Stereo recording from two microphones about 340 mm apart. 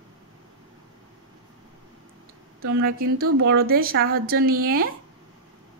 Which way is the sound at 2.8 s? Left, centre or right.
Right.